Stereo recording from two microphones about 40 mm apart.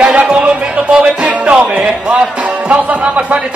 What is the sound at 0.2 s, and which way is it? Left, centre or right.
Music, right.